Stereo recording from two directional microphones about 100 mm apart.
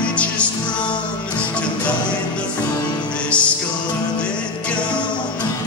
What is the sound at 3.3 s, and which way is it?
Music, 10° left (ahead or behind).